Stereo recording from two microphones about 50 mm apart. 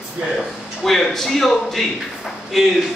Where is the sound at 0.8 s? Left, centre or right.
Centre.